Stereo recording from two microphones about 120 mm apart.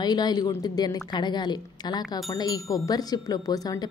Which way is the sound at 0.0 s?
35° left (ahead or behind).